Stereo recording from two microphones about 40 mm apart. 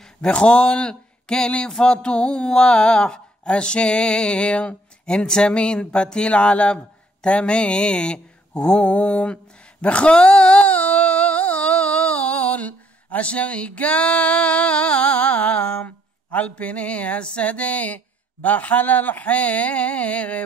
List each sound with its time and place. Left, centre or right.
0.3 s speech: left
10.7 s a sound: left
16.3 s speech: left